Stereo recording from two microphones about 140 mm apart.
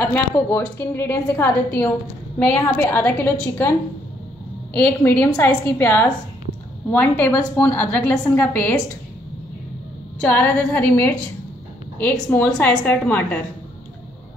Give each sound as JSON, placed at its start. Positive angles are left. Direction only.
{"t": 0.0, "sound": "a woman's voice", "side_deg": 15}
{"t": 5.4, "sound": "a woman's voice", "side_deg": 15}
{"t": 10.2, "sound": "a woman's voice", "side_deg": 15}